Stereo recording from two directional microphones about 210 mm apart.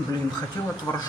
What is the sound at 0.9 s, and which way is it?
Speech, 15° left (ahead or behind).